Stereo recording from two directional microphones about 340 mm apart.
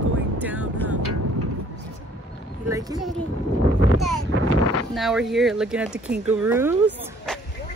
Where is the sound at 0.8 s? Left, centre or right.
Right.